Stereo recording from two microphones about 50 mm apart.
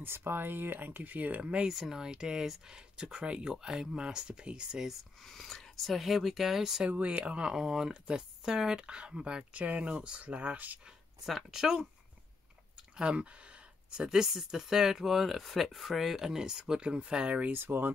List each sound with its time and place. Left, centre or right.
0.0 s speech: right
1.4 s speech: right
1.7 s speech: centre
5.3 s speech: centre
6.9 s speech: right
11.5 s speech: centre
12.9 s speech: right
17.5 s speech: right